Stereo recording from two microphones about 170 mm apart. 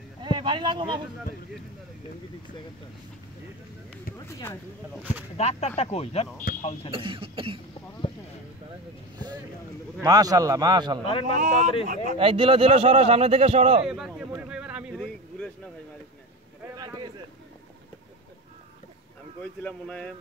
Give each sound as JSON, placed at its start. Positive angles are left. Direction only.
{"t": 0.2, "sound": "a sound", "side_deg": -25}
{"t": 4.3, "sound": "speech", "side_deg": 15}
{"t": 5.4, "sound": "speech", "side_deg": 40}
{"t": 6.5, "sound": "speech", "side_deg": 60}
{"t": 6.9, "sound": "speech", "side_deg": -30}
{"t": 10.0, "sound": "a man's voice", "side_deg": -20}
{"t": 11.1, "sound": "speech", "side_deg": 30}
{"t": 11.3, "sound": "speech", "side_deg": -45}
{"t": 12.2, "sound": "speech", "side_deg": -30}
{"t": 13.8, "sound": "a sound", "side_deg": -5}
{"t": 16.7, "sound": "a sound", "side_deg": -20}
{"t": 19.6, "sound": "speech", "side_deg": 5}